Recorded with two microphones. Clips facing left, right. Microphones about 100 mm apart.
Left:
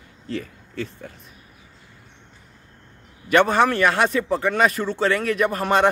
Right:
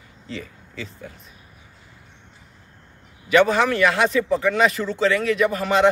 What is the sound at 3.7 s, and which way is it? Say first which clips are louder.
Speech: even; 40° left (ahead or behind).